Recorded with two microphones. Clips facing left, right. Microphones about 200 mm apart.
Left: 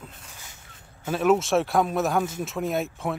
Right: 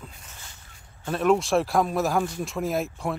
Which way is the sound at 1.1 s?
Centre (ahead or behind).